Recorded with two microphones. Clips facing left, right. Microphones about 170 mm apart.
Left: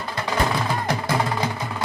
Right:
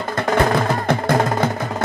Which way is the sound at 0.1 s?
50° right (ahead or behind).